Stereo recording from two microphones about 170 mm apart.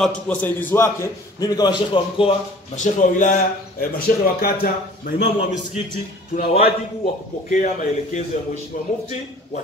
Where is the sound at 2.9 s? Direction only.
50° left (ahead or behind).